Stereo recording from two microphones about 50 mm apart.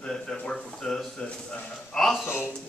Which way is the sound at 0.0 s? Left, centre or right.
Centre.